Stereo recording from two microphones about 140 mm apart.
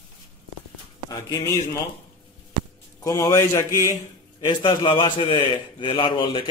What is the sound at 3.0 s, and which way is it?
Speech, 25° left (ahead or behind).